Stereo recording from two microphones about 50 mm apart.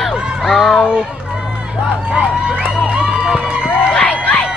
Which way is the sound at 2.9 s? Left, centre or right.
Right.